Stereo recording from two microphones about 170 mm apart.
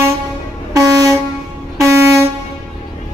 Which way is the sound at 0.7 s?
20° right (ahead or behind).